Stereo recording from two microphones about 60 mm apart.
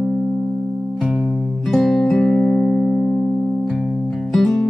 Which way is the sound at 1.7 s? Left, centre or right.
Centre.